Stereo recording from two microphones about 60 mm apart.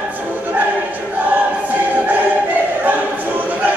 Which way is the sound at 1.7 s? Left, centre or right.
Right.